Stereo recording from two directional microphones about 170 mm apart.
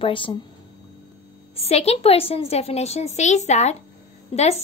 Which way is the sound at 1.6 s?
40° left (ahead or behind).